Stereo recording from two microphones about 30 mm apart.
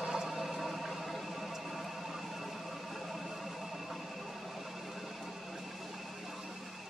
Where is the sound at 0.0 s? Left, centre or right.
Centre.